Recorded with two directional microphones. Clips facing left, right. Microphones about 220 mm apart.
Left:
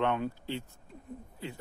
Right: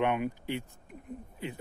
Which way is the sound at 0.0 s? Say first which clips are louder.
Right 1 dB; 15° right (ahead or behind).